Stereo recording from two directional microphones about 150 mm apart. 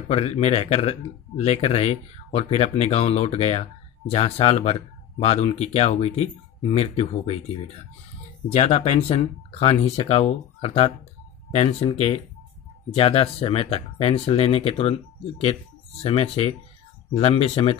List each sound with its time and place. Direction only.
0.1 s speech: 45° left (ahead or behind)
16.0 s speech: 40° left (ahead or behind)